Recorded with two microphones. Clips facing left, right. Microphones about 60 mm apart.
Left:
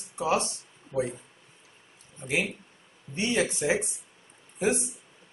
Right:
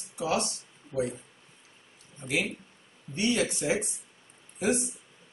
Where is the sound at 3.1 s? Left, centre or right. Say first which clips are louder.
Even; left.